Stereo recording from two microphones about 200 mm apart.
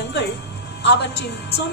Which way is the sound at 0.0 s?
55° left (ahead or behind).